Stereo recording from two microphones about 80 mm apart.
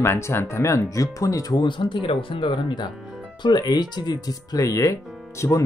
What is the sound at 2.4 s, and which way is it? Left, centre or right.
Speech, left.